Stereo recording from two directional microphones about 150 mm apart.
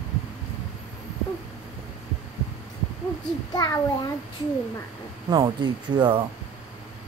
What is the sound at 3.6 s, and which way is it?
Speech, 25° left (ahead or behind).